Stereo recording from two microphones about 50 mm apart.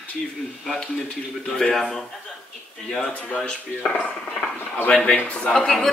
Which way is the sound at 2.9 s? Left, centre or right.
Left.